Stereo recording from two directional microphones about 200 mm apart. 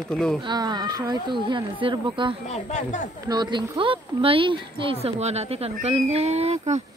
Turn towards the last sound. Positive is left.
turn(degrees=-35)  # may be behind; listen again after turning